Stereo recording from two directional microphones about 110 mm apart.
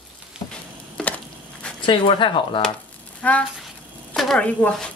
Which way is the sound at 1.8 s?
50° left (ahead or behind).